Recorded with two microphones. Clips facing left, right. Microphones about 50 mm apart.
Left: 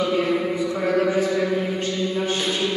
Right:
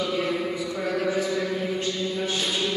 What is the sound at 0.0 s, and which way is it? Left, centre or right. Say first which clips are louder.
Mantra: left 5 dB; centre.